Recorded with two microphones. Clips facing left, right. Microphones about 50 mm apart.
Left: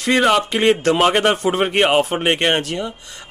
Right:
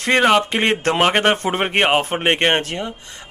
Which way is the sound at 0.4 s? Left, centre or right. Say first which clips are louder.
Left 2 dB; right.